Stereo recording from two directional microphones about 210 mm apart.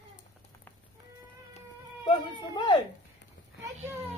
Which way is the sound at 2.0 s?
20° left (ahead or behind).